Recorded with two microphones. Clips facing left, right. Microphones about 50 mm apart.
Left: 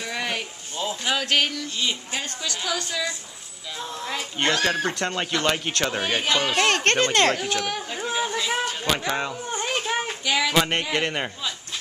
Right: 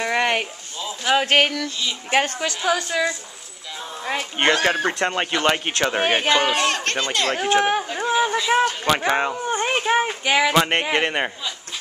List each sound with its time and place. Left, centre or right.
0.0 s a sound: right
1.0 s a woman's voice: right
4.7 s speech: right
5.9 s a woman's voice: right
6.6 s speech: left
7.2 s a woman's voice: right
7.8 s a sound: centre
8.5 s a woman's voice: right
10.5 s speech: right